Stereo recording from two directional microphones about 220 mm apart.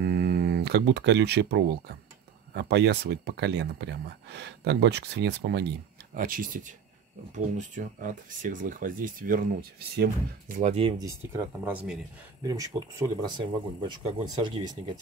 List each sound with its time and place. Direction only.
0.0 s speech: 45° right (ahead or behind)
6.1 s speech: 40° right (ahead or behind)
10.6 s speech: 25° right (ahead or behind)